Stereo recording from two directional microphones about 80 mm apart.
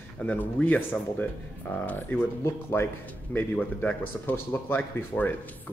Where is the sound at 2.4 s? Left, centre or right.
Left.